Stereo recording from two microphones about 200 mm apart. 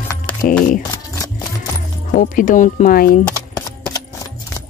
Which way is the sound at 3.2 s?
5° left (ahead or behind).